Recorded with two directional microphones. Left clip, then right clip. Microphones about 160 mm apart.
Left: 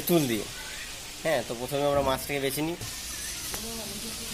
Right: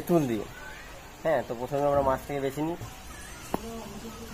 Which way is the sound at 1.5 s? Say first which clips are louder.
Even; 10° left (ahead or behind).